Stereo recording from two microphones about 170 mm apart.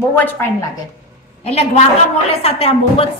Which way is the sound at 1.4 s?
40° left (ahead or behind).